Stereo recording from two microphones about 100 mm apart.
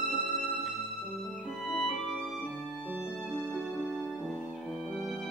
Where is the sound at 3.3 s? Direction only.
20° right (ahead or behind).